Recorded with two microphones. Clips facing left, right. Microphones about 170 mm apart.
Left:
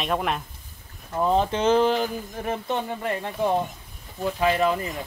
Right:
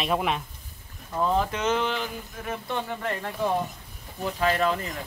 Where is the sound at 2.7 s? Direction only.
15° left (ahead or behind).